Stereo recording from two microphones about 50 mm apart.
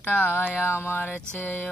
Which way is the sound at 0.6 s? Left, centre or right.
Left.